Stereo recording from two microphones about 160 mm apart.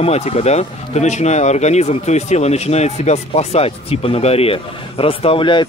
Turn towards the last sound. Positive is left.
turn(degrees=30)  # may be behind; listen again after turning